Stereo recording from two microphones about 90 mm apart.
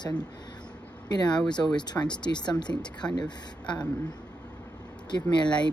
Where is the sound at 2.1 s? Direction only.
55° left (ahead or behind).